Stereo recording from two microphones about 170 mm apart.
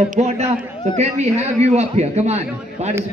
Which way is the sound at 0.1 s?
45° right (ahead or behind).